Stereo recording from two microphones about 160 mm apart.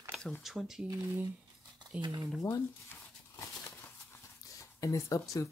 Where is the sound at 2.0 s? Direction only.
25° right (ahead or behind).